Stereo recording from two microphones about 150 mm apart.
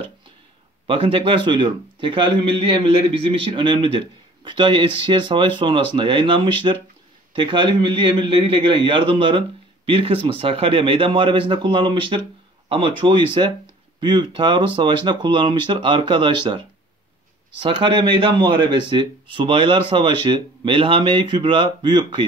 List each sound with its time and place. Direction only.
0.8 s a man's voice: 35° right (ahead or behind)